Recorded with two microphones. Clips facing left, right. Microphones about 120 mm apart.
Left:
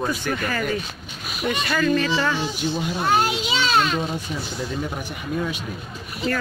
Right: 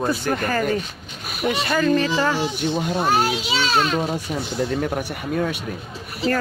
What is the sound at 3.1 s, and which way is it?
Speech, 5° right (ahead or behind).